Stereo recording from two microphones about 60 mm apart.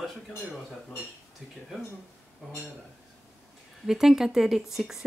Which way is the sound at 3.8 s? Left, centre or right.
Centre.